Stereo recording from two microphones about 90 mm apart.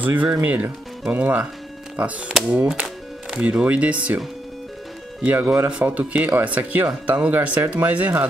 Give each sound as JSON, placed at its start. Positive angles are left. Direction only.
{"t": 0.0, "sound": "speech", "side_deg": -15}
{"t": 5.2, "sound": "speech", "side_deg": -20}